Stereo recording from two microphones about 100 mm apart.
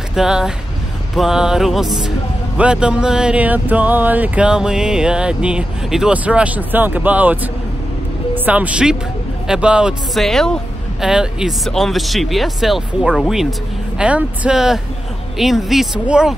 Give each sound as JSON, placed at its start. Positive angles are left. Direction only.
{"t": 0.1, "sound": "speech", "side_deg": -5}
{"t": 8.5, "sound": "speech", "side_deg": -15}
{"t": 10.2, "sound": "speech", "side_deg": 5}
{"t": 11.0, "sound": "speech", "side_deg": -5}
{"t": 13.9, "sound": "speech", "side_deg": -15}